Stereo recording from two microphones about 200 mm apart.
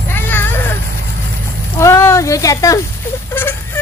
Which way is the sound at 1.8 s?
15° left (ahead or behind).